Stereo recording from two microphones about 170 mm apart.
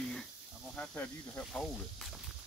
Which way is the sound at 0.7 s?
10° left (ahead or behind).